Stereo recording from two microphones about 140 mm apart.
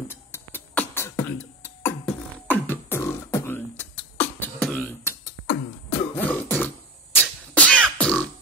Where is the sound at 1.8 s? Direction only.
15° left (ahead or behind).